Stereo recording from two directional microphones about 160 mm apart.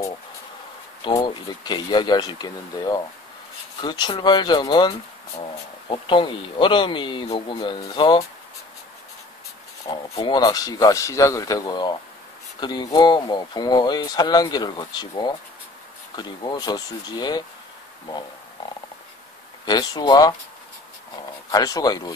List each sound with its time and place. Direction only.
1.1 s speech: 25° left (ahead or behind)
9.8 s speech: 30° left (ahead or behind)
19.6 s speech: 25° left (ahead or behind)
21.5 s speech: 25° left (ahead or behind)